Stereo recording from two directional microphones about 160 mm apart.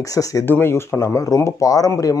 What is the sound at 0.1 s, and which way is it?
Speech, 20° left (ahead or behind).